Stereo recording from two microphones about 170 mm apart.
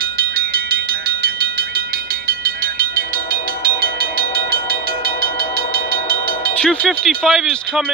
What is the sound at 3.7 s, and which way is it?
Train, 60° right (ahead or behind).